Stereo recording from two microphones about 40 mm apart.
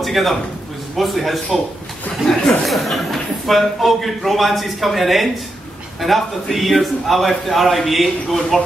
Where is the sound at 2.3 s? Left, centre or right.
Centre.